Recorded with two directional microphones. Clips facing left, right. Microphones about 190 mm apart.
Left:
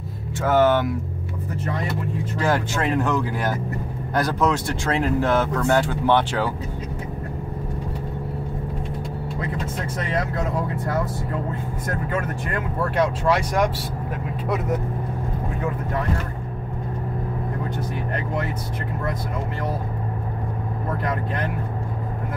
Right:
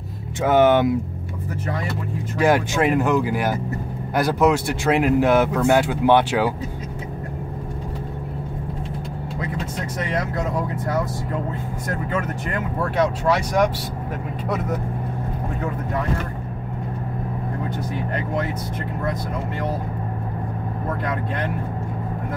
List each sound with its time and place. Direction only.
0.4 s speech: 15° right (ahead or behind)
2.3 s speech: 15° right (ahead or behind)
12.9 s speech: centre (ahead or behind)